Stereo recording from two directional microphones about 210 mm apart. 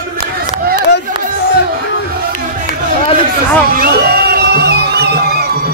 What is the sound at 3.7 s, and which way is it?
Music, 45° right (ahead or behind).